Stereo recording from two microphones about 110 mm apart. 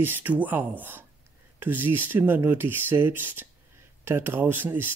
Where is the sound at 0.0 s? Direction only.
15° right (ahead or behind).